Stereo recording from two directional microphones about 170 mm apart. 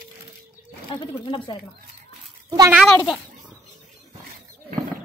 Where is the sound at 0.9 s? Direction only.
25° left (ahead or behind).